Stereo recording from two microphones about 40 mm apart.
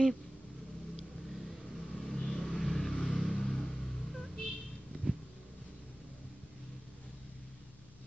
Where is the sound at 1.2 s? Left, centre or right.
Centre.